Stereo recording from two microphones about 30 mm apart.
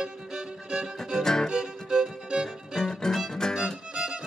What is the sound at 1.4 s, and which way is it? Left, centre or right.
Music, centre.